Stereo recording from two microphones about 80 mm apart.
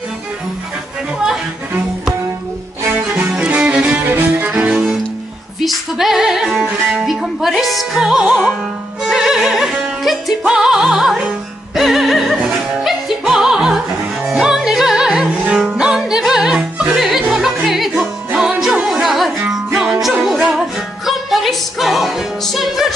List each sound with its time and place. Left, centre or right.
3.2 s music: centre
4.6 s music: centre
5.6 s music: centre
13.2 s opera: centre
14.2 s music: centre